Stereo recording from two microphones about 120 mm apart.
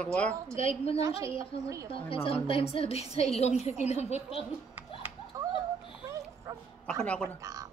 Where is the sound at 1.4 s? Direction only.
25° right (ahead or behind).